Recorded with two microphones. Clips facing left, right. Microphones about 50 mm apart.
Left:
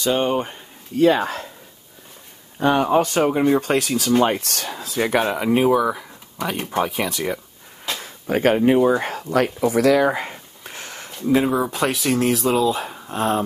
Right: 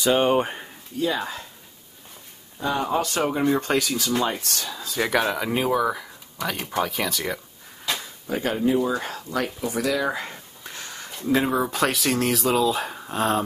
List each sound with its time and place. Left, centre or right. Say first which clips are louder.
0.0 s speech: even; centre
0.3 s speech: right 1 dB; centre
0.9 s speech: left 9 dB; left
2.6 s speech: left 7 dB; left
3.3 s speech: left 4 dB; centre
3.8 s speech: left 6 dB; left
5.0 s speech: left 3 dB; centre
6.3 s speech: left 3 dB; left
8.0 s speech: left 13 dB; left
9.3 s speech: left 8 dB; left
10.2 s a sound: left 3 dB; left
11.3 s speech: left 3 dB; centre